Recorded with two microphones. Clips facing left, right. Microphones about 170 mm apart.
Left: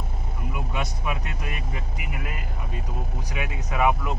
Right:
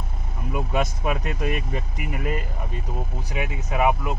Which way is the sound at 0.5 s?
45° right (ahead or behind).